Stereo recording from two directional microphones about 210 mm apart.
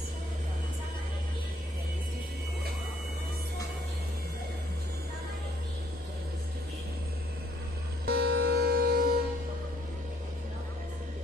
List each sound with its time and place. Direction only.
8.1 s music: 50° right (ahead or behind)